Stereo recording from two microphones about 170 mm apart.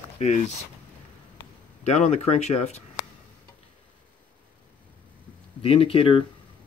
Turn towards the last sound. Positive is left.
turn(degrees=35)  # may be behind; listen again after turning